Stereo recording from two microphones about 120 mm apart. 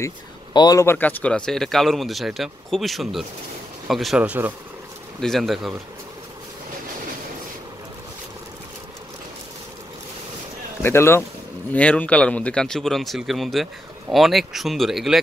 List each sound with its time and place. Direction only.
0.5 s speech: 35° left (ahead or behind)
0.8 s speech: 15° left (ahead or behind); by 4.2 s centre (ahead or behind)
4.2 s speech: 15° right (ahead or behind)
5.2 s speech: centre (ahead or behind)
10.8 s speech: 20° left (ahead or behind); by 15.1 s centre (ahead or behind)